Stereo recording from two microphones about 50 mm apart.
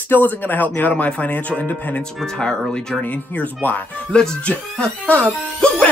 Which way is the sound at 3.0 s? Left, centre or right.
Left.